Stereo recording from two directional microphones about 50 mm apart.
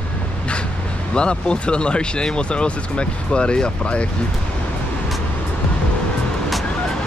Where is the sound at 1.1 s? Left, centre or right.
Centre.